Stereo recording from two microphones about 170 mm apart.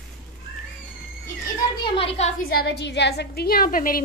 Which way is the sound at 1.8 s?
35° left (ahead or behind).